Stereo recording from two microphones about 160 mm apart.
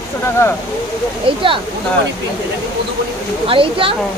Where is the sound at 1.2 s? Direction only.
35° right (ahead or behind).